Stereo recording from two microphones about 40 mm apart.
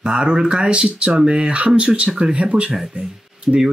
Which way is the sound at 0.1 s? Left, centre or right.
Right.